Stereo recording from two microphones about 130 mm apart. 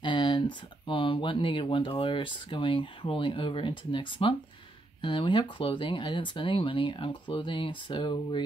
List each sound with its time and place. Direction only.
0.0 s speech: 40° left (ahead or behind)